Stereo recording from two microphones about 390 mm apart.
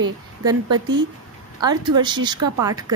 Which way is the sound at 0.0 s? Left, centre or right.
Centre.